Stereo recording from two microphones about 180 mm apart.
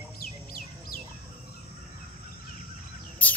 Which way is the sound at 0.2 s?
55° left (ahead or behind).